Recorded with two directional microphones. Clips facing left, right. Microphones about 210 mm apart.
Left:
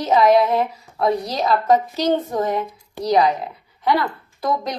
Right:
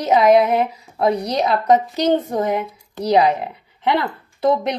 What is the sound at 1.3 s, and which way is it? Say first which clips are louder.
Speech: right 1 dB; 20° right (ahead or behind).